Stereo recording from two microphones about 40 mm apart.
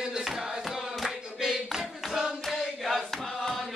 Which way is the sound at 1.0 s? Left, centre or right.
Centre.